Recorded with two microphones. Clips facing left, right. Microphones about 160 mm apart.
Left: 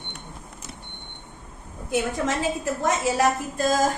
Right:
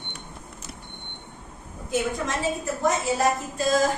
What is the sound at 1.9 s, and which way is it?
Speech, 90° left.